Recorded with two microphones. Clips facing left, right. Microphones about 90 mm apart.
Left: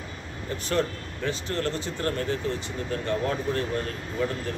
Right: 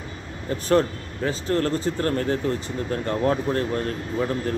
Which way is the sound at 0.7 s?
40° right (ahead or behind).